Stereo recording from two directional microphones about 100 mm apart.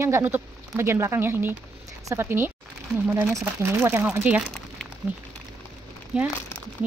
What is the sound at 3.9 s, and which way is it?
Speech, 20° right (ahead or behind).